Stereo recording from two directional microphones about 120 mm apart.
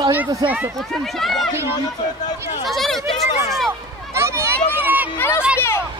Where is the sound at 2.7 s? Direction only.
Centre (ahead or behind).